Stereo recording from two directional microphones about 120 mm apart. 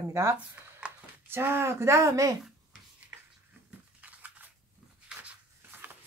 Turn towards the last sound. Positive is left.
turn(degrees=-10)  # may be behind; listen again after turning